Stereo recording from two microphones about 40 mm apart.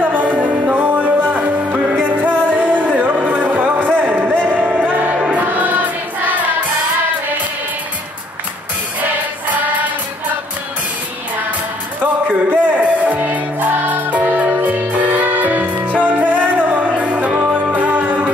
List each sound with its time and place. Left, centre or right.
0.0 s music: right
12.0 s music: right